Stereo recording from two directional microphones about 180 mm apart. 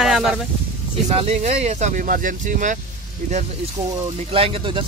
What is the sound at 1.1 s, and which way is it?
Speech, 35° right (ahead or behind).